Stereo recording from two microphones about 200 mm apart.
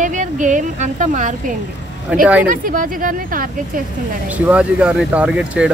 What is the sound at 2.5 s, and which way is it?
Speech, 45° right (ahead or behind).